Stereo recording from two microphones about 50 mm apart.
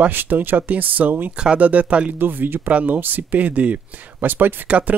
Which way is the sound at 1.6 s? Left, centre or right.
Right.